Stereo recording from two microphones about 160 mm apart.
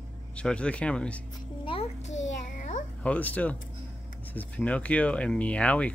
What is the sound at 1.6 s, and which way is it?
Music, 35° left (ahead or behind).